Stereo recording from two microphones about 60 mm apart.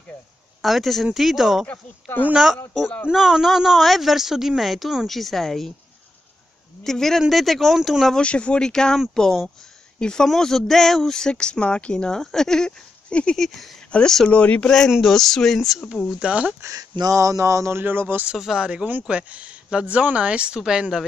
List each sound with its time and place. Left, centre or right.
0.6 s speech: centre
1.7 s speech: left
3.1 s speech: centre
6.8 s speech: centre
8.2 s speech: centre
13.4 s speech: centre; by 14.7 s left
15.0 s speech: centre
16.2 s speech: right
16.6 s speech: right
18.4 s speech: centre